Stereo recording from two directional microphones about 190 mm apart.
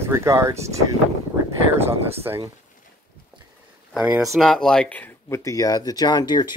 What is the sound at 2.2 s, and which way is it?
Speech, 15° right (ahead or behind).